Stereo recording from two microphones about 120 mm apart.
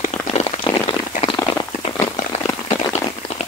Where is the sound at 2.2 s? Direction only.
90° left.